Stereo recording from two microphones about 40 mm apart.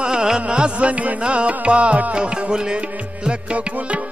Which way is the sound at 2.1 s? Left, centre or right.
Right.